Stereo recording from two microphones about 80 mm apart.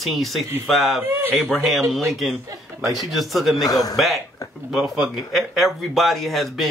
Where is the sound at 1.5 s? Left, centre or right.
Centre.